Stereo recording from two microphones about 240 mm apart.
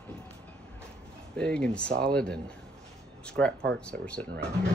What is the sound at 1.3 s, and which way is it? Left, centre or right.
A man's voice, centre.